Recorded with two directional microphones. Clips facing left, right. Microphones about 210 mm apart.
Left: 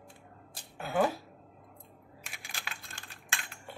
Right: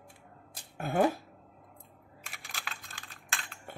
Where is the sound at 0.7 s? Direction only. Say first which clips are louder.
Right 2 dB; 50° right (ahead or behind).